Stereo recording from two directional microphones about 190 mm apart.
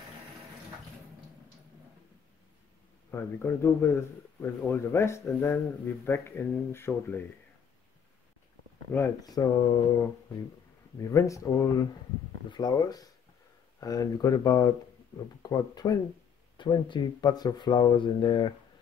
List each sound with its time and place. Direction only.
3.1 s speech: 10° left (ahead or behind)
8.9 s speech: 15° left (ahead or behind)
11.1 s speech: 15° left (ahead or behind)